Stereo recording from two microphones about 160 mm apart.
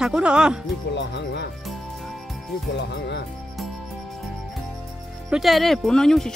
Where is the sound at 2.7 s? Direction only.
90° left.